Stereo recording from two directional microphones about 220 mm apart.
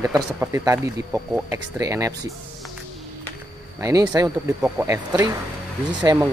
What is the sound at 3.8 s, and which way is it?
Speech, 15° right (ahead or behind).